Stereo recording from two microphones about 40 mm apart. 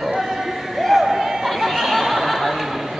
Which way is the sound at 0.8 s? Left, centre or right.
Centre.